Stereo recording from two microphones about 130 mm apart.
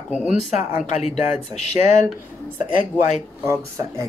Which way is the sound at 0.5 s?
60° left (ahead or behind).